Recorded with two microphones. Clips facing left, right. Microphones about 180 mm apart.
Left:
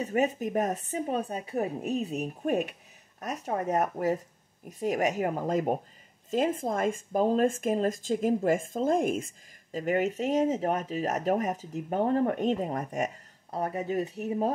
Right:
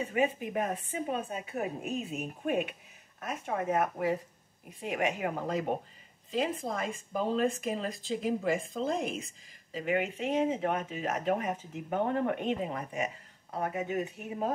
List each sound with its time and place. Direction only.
0.0 s speech: 40° left (ahead or behind)